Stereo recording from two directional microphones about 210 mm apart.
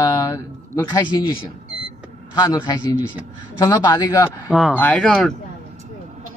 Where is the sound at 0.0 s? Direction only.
15° left (ahead or behind).